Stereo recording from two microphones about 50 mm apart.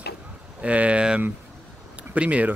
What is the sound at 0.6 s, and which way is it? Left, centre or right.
Speech, right.